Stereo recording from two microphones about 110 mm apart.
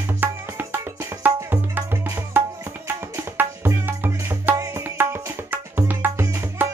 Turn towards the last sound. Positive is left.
turn(degrees=-15)  # may be behind; listen again after turning